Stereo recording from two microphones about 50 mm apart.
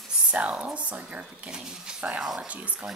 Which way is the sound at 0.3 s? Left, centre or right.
Right.